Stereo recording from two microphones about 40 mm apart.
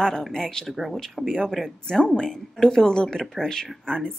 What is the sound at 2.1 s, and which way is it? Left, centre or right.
A woman's voice, centre.